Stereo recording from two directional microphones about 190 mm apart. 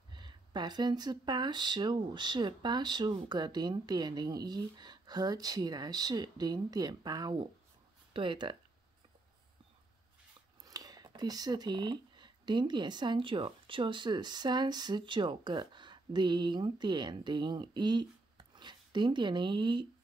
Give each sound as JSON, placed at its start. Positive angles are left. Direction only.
{"t": 0.1, "sound": "speech", "side_deg": -25}
{"t": 10.6, "sound": "speech", "side_deg": -20}